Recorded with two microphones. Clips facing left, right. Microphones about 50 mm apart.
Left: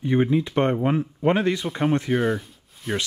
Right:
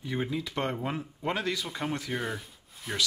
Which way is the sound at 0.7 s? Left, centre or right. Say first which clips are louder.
Left 11 dB; centre.